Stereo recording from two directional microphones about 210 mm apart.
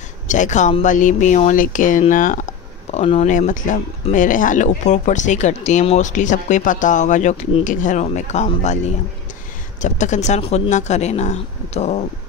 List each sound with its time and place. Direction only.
0.3 s speech: 35° left (ahead or behind)